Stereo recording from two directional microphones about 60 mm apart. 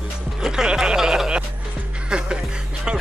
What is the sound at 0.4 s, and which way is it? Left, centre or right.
Music, centre.